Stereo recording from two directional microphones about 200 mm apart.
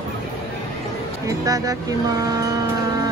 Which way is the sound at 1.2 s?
15° right (ahead or behind).